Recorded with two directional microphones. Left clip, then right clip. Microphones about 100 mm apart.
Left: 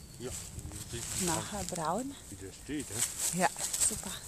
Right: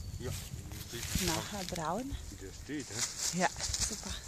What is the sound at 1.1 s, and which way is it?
Speech, 15° left (ahead or behind).